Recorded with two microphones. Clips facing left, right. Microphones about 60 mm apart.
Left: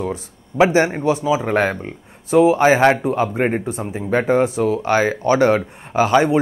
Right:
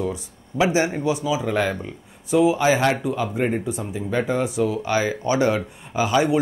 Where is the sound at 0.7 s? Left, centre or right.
Left.